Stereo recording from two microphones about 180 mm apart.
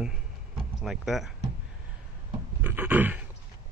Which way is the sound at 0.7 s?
Centre (ahead or behind).